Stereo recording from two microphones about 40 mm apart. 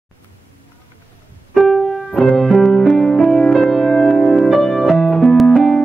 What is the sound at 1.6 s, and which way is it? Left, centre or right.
Music, centre.